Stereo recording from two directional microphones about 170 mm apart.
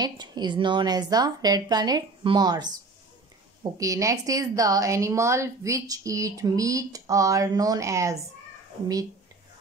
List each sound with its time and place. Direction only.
0.0 s a woman's voice: 25° right (ahead or behind)
3.8 s a woman's voice: 20° right (ahead or behind)